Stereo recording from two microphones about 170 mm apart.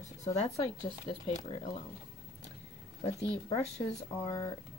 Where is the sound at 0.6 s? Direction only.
35° left (ahead or behind).